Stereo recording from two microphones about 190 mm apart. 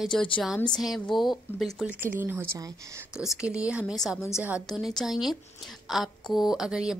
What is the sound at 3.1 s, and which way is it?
A woman's voice, 5° right (ahead or behind).